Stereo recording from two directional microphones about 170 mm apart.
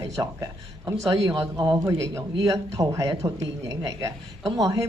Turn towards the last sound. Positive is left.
turn(degrees=-20)  # may be behind; listen again after turning